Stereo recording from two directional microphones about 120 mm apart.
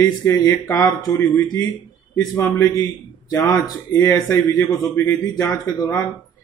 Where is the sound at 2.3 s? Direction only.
20° left (ahead or behind).